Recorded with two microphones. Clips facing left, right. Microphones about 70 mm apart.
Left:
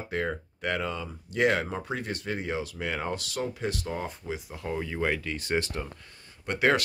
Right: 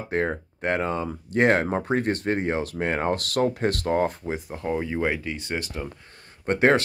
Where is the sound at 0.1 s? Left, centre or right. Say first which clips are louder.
Right 6 dB; right.